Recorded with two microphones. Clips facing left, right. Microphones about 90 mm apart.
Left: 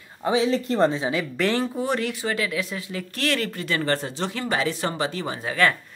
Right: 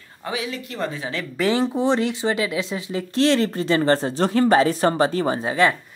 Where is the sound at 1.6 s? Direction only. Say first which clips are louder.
Right 5 dB; 25° right (ahead or behind).